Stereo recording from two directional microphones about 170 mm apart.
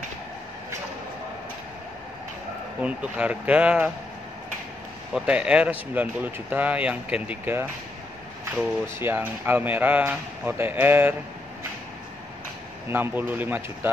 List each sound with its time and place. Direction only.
2.8 s speech: 5° right (ahead or behind)
5.1 s speech: 5° right (ahead or behind)
8.8 s speech: 15° right (ahead or behind)
12.9 s speech: 10° right (ahead or behind)